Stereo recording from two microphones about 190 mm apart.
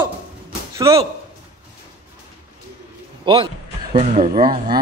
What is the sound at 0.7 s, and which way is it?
Speech, 15° right (ahead or behind).